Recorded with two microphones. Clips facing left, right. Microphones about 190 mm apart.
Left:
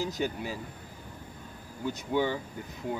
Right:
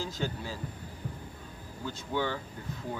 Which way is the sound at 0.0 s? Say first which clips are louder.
Left 4 dB; 15° left (ahead or behind).